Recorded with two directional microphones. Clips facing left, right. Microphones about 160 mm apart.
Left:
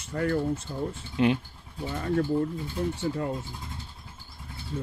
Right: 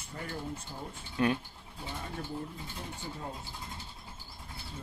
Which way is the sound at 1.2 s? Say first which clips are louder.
Left 5 dB; 20° left (ahead or behind).